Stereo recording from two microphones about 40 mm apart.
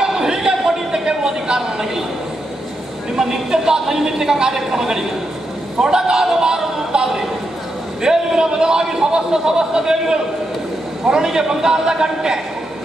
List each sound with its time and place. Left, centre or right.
0.0 s a sound: centre
3.2 s a man's voice: centre
11.2 s a man's voice: centre